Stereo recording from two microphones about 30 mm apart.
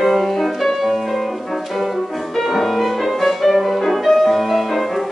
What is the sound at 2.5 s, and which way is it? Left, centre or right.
Music, centre.